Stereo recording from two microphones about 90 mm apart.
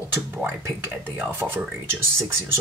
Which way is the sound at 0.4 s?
25° right (ahead or behind).